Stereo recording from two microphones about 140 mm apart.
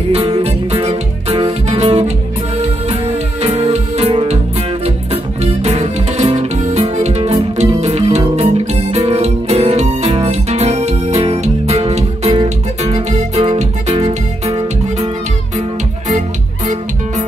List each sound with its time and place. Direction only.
0.1 s music: 50° right (ahead or behind)